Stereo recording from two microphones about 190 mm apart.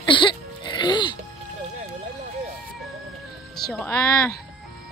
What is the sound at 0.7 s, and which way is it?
Speech, 25° left (ahead or behind).